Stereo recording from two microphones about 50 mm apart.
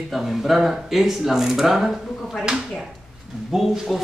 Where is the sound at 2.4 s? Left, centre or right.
Centre.